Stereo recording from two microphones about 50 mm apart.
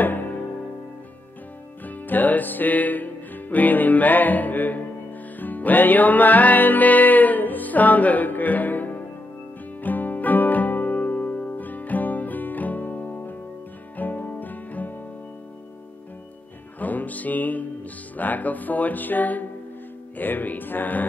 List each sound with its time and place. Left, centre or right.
0.0 s music: left
1.9 s music: left
16.8 s music: left
18.1 s speech: left